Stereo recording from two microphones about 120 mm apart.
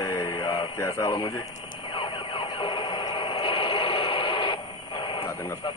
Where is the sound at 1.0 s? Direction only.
40° left (ahead or behind).